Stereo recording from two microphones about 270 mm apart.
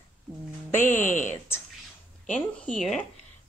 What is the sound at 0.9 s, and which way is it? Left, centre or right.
Speech, left.